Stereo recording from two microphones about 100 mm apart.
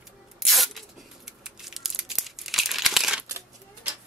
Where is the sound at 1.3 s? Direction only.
5° right (ahead or behind).